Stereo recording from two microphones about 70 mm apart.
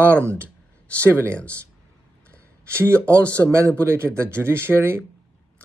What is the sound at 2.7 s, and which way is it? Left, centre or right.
Speech, right.